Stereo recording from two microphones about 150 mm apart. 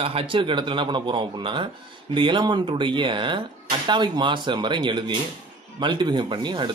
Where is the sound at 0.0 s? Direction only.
40° right (ahead or behind).